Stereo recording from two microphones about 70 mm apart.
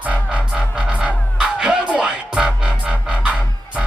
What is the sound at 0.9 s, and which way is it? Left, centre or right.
Music, centre.